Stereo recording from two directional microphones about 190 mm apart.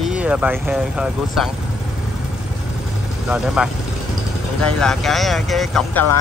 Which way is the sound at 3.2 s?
5° right (ahead or behind).